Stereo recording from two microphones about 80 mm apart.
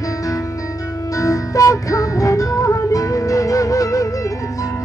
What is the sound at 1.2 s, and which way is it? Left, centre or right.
Music, left.